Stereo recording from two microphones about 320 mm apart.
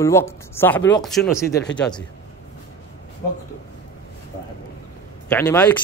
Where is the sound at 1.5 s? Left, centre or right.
Left.